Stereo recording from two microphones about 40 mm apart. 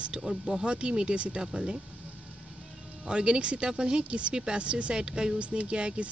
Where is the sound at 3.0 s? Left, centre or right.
Right.